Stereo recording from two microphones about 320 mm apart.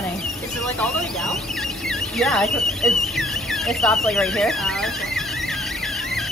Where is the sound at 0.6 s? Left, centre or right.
Centre.